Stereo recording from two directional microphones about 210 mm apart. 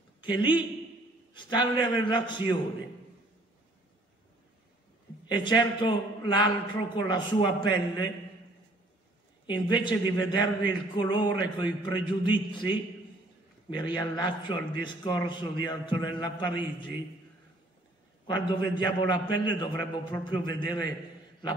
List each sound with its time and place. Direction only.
0.2 s a man's voice: 20° left (ahead or behind)
5.3 s a man's voice: 20° left (ahead or behind)
9.5 s a man's voice: 20° left (ahead or behind)
18.2 s a man's voice: 25° left (ahead or behind)